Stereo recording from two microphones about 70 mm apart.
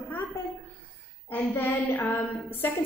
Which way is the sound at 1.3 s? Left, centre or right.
Left.